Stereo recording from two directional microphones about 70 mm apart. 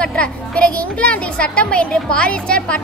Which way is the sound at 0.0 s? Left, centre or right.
Centre.